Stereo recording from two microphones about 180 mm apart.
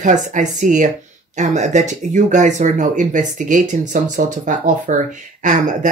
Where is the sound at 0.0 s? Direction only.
45° right (ahead or behind).